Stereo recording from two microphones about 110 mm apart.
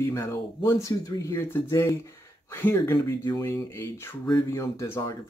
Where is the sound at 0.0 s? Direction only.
25° left (ahead or behind).